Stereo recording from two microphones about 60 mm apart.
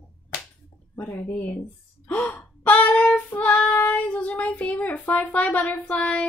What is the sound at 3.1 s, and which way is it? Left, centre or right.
Child singing, left.